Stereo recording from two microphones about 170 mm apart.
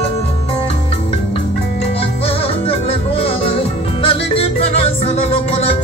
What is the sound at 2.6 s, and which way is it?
Music, 35° left (ahead or behind).